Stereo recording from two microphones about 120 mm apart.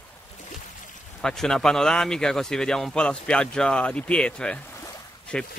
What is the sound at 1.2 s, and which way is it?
Speech, 5° left (ahead or behind).